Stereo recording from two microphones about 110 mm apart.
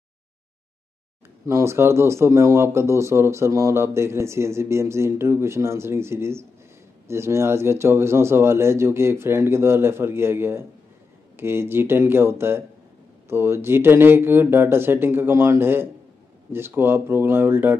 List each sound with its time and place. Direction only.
1.4 s speech: 25° right (ahead or behind)